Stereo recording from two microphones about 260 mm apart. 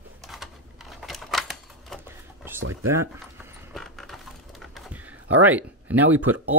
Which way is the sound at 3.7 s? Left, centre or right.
Centre.